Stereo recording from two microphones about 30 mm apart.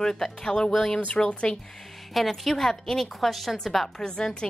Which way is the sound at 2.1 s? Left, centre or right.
Centre.